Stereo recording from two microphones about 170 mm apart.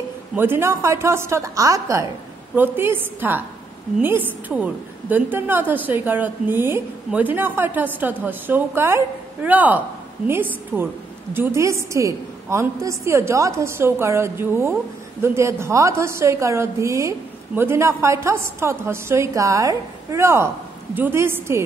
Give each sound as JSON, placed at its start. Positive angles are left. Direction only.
{"t": 0.4, "sound": "a woman's voice", "side_deg": -15}
{"t": 5.1, "sound": "a woman's voice", "side_deg": -10}